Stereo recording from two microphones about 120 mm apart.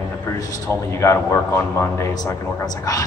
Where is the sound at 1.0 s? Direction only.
25° left (ahead or behind).